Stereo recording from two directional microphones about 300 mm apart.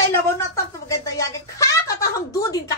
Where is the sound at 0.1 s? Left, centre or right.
Centre.